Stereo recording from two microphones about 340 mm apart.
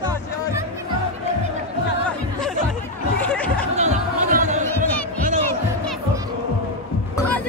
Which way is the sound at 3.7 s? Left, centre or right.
Right.